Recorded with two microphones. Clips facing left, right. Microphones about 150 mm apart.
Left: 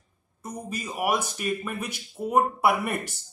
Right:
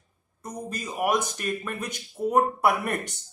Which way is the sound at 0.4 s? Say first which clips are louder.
Even; 10° left (ahead or behind).